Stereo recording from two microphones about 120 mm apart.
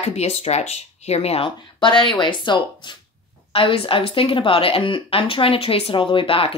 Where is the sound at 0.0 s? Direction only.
60° left (ahead or behind).